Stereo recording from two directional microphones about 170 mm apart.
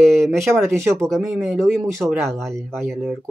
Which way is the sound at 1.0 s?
Centre (ahead or behind).